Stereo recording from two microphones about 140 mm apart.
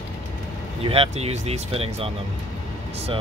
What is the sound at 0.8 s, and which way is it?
Speech, 45° right (ahead or behind).